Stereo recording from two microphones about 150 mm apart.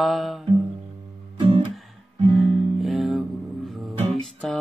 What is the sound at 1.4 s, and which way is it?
Guitar, 30° right (ahead or behind).